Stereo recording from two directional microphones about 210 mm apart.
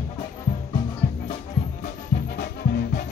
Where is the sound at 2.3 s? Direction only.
50° left (ahead or behind).